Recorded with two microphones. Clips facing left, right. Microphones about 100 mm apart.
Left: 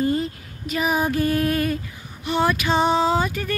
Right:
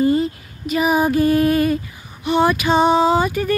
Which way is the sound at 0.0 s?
10° right (ahead or behind).